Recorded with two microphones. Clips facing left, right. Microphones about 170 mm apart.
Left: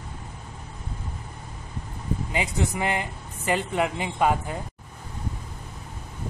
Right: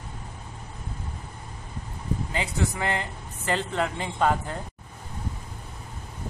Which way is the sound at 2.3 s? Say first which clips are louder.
Left 2 dB; 15° left (ahead or behind).